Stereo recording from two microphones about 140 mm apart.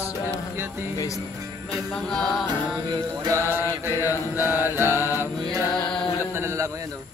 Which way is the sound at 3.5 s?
15° right (ahead or behind).